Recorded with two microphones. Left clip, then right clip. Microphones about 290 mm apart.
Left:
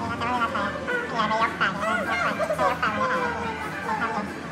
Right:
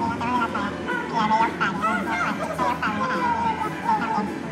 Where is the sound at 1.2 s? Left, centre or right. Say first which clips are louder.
Right 3 dB; centre.